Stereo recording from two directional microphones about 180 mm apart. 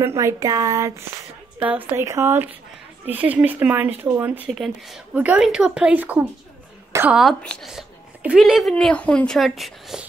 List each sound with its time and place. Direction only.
0.0 s a woman's voice: 15° right (ahead or behind); by 10.0 s centre (ahead or behind)